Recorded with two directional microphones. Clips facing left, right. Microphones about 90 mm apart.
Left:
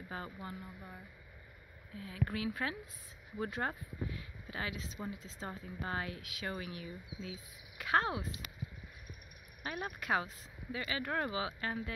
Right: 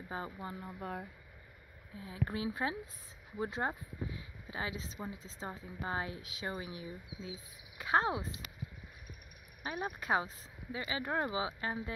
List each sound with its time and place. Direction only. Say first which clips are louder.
0.1 s speech: right 3 dB; 25° right (ahead or behind)
0.7 s speech: right 10 dB; 70° right (ahead or behind)
2.0 s speech: even; 25° right (ahead or behind)
9.6 s speech: right 2 dB; 20° right (ahead or behind)